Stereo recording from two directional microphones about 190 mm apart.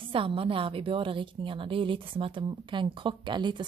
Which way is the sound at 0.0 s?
30° right (ahead or behind).